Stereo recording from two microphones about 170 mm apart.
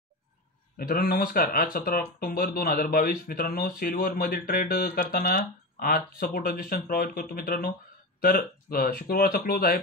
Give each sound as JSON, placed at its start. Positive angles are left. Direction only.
{"t": 0.7, "sound": "speech", "side_deg": 60}